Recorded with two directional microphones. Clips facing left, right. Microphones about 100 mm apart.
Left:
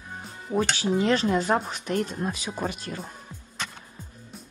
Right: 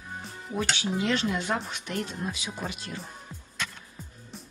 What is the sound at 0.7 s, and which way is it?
Speech, 35° left (ahead or behind).